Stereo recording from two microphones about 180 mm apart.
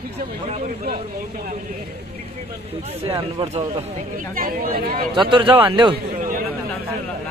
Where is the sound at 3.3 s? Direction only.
35° right (ahead or behind).